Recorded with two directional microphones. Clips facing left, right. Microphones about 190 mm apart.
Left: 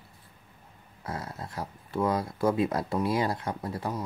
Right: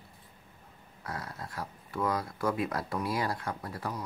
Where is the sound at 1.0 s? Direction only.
25° left (ahead or behind).